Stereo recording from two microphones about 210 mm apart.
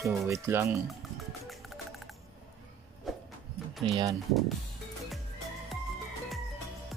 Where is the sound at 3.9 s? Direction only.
20° right (ahead or behind).